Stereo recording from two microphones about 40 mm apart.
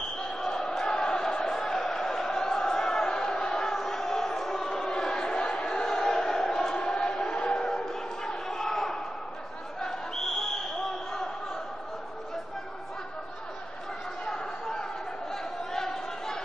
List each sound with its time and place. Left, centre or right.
0.4 s crowd: centre
9.8 s a sound: centre
14.2 s chatter: centre
15.3 s crowd: centre